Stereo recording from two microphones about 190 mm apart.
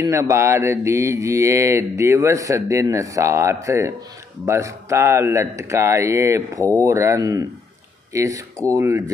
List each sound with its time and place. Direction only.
0.0 s mantra: 15° right (ahead or behind)